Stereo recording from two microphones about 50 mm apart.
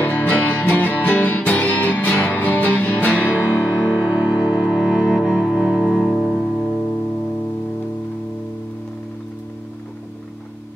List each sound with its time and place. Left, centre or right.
0.0 s music: left
3.3 s music: right
4.6 s music: centre
5.9 s music: centre